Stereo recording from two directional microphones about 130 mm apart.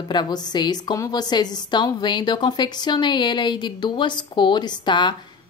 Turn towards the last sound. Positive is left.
turn(degrees=35)  # may be behind; listen again after turning